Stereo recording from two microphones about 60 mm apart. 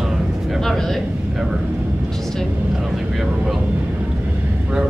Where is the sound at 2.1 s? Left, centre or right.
Centre.